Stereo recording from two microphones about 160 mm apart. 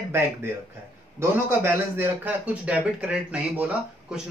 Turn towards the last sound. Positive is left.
turn(degrees=-10)  # may be behind; listen again after turning